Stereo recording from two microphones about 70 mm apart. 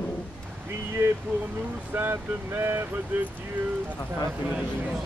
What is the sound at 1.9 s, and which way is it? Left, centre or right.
Speech, right.